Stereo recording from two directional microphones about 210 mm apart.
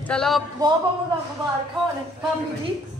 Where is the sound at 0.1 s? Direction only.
Centre (ahead or behind).